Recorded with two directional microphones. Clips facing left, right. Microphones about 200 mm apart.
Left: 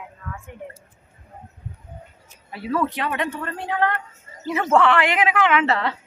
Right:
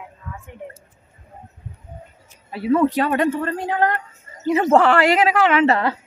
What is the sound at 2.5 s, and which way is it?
Speech, 25° right (ahead or behind).